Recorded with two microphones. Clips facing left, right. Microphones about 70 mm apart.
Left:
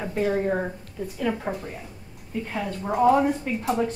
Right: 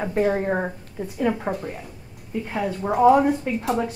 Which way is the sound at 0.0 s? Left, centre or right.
Right.